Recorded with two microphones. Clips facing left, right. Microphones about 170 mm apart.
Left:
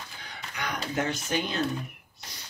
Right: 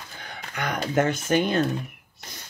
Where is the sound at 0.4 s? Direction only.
55° right (ahead or behind).